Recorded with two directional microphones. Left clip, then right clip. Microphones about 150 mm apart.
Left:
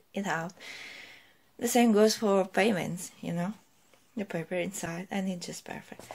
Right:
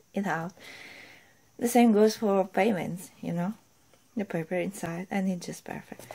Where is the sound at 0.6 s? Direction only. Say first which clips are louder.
Left 2 dB; 25° right (ahead or behind).